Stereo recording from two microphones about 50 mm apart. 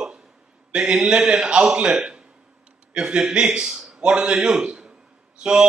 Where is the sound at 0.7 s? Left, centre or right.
Centre.